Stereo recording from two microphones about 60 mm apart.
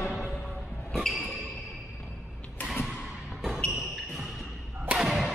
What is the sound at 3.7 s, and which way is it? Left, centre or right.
Basketball bounce, centre.